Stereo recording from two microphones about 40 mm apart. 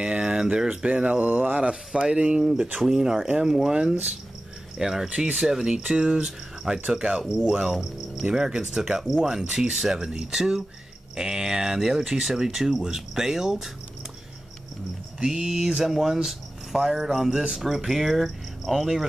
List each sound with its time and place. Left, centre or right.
0.0 s speech: right
0.8 s speech: right
2.0 s speech: right
15.2 s speech: centre